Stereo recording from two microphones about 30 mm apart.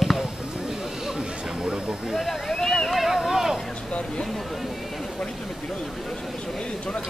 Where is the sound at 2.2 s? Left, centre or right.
Centre.